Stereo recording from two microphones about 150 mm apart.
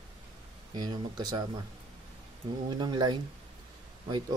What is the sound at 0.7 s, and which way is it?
Speech, 25° right (ahead or behind).